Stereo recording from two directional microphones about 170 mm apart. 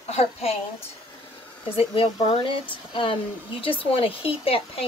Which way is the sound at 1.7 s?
30° left (ahead or behind).